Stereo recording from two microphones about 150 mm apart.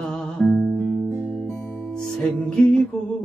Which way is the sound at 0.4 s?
Centre (ahead or behind).